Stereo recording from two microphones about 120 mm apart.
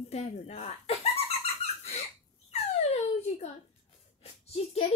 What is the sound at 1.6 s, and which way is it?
Squeak, 60° left (ahead or behind).